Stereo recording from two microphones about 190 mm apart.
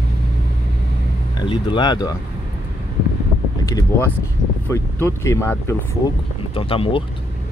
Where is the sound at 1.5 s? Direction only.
25° left (ahead or behind).